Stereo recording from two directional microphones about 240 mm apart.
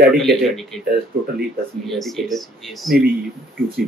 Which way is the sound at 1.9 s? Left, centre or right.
Centre.